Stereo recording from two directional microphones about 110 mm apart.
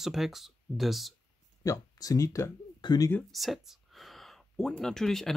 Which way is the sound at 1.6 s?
30° left (ahead or behind).